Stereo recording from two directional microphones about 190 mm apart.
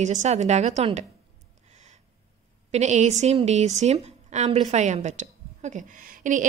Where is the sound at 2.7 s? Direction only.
35° right (ahead or behind).